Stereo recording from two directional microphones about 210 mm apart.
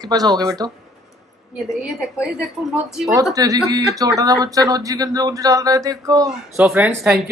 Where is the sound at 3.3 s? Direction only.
15° right (ahead or behind).